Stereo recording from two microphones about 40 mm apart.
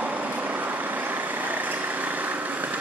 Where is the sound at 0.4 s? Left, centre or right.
Right.